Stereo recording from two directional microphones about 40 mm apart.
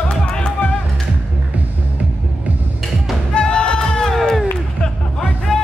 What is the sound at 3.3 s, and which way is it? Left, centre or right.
Music, left.